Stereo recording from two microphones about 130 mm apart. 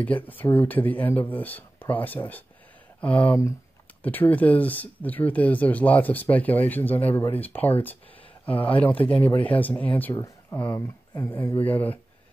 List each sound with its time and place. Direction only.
0.0 s speech: 10° left (ahead or behind)
10.1 s a sound: 25° left (ahead or behind)
10.6 s speech: 15° left (ahead or behind)